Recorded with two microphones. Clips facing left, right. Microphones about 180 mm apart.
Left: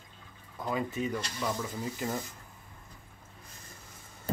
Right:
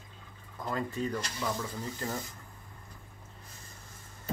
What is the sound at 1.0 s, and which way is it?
Speech, 5° left (ahead or behind).